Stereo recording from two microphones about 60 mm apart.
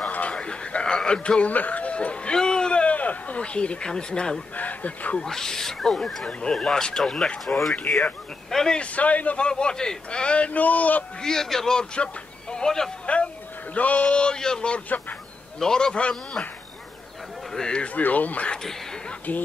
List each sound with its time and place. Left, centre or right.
0.1 s a sound: left
4.6 s speech: left
5.2 s speech: centre
7.5 s a man's voice: left
7.9 s speech: centre
8.9 s a man's voice: left
9.5 s a man's voice: centre
11.1 s speech: centre
13.0 s a sound: centre
13.7 s a man's voice: left
17.5 s a man's voice: centre
19.0 s a sound: left